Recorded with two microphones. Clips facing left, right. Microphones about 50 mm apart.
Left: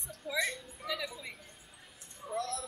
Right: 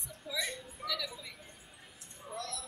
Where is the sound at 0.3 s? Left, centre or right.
Left.